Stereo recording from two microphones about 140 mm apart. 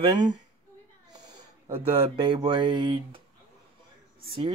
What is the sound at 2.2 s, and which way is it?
Speech, 30° right (ahead or behind).